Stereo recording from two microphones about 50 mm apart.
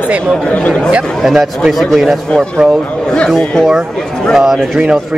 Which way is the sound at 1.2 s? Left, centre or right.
Centre.